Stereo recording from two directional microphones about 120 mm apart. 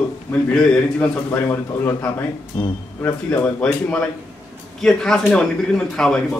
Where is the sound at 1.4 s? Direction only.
20° left (ahead or behind).